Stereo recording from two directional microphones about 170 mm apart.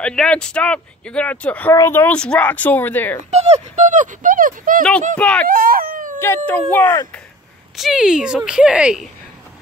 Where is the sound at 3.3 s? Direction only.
40° right (ahead or behind).